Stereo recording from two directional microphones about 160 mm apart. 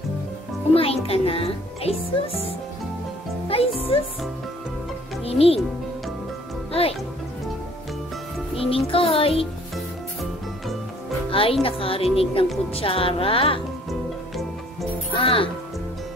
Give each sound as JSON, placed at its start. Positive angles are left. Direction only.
{"t": 0.7, "sound": "speech", "side_deg": 35}
{"t": 3.5, "sound": "speech", "side_deg": 40}
{"t": 5.2, "sound": "speech", "side_deg": 40}
{"t": 6.7, "sound": "speech", "side_deg": 35}
{"t": 8.5, "sound": "speech", "side_deg": 35}
{"t": 11.2, "sound": "music", "side_deg": 35}
{"t": 11.6, "sound": "speech", "side_deg": 35}
{"t": 15.1, "sound": "speech", "side_deg": 35}